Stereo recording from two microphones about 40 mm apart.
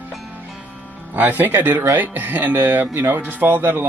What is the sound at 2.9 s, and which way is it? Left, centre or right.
Speech, right.